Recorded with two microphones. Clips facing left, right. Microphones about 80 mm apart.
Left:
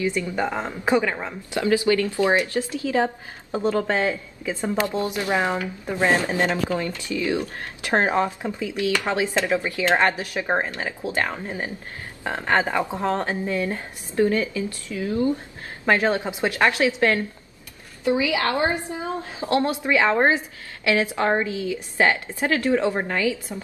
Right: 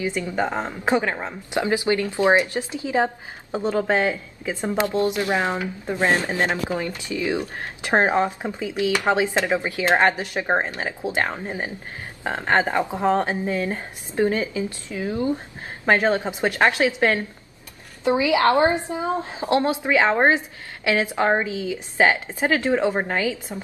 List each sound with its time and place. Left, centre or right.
0.0 s a woman's voice: right
4.8 s a woman's voice: left
5.5 s a woman's voice: right